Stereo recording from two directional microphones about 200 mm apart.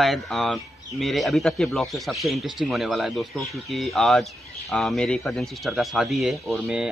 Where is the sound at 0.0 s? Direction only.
Centre (ahead or behind).